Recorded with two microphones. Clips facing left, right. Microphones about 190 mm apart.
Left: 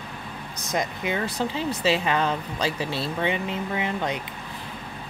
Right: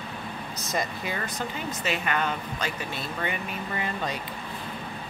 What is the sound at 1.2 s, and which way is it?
Speech, 30° left (ahead or behind).